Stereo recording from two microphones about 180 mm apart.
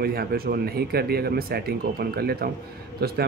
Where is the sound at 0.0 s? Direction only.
60° right (ahead or behind).